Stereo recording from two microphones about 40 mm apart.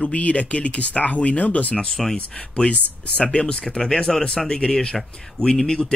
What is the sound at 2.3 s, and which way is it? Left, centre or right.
Speech, left.